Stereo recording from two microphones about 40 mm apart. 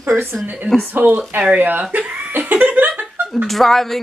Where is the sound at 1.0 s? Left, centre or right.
Right.